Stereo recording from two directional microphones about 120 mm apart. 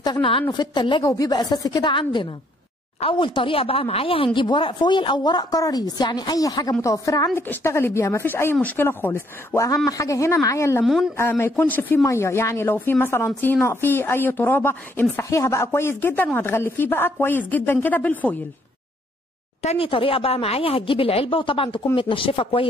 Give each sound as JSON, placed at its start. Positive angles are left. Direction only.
{"t": 0.0, "sound": "speech", "side_deg": 40}
{"t": 1.1, "sound": "speech", "side_deg": 30}
{"t": 9.8, "sound": "speech", "side_deg": 30}
{"t": 10.8, "sound": "a woman's voice", "side_deg": -5}
{"t": 11.1, "sound": "speech", "side_deg": 20}
{"t": 19.6, "sound": "speech", "side_deg": 55}